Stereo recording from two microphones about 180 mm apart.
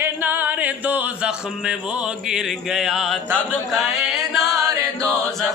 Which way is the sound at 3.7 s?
Centre (ahead or behind).